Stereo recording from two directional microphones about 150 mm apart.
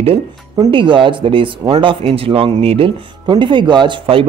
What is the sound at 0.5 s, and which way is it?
A woman's voice, 30° right (ahead or behind).